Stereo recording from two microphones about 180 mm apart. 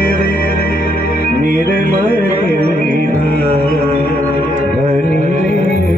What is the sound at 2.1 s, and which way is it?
Music, 60° left (ahead or behind).